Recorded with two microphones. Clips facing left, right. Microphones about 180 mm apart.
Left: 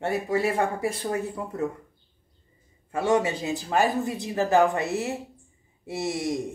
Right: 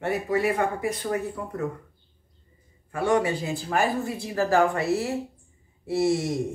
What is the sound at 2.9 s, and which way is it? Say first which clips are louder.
Speech: even; 20° left (ahead or behind).